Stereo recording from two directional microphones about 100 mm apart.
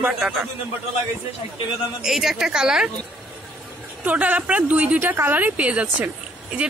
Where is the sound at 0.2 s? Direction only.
5° right (ahead or behind).